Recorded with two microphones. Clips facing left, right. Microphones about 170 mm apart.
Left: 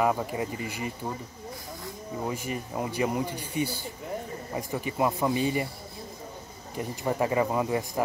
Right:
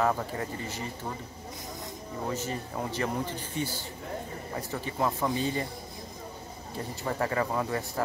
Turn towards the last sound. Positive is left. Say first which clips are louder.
# left 3 dB
turn(degrees=15)  # may be behind; listen again after turning